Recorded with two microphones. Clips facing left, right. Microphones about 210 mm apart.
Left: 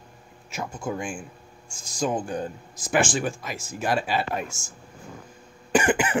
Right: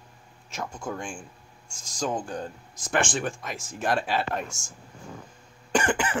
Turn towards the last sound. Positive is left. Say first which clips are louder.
# left 4 dB
turn(degrees=10)  # may be behind; listen again after turning